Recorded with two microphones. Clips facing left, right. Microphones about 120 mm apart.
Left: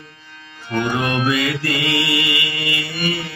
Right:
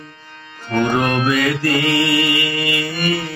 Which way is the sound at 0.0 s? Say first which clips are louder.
Right 3 dB; 50° right (ahead or behind).